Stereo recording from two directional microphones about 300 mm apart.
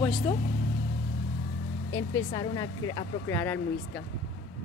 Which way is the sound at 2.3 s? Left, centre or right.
Centre.